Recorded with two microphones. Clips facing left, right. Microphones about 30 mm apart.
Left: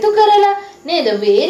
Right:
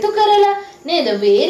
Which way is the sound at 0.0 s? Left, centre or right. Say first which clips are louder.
Left 2 dB; centre.